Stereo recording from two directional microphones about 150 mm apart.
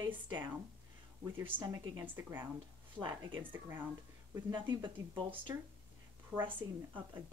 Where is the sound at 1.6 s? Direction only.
25° right (ahead or behind).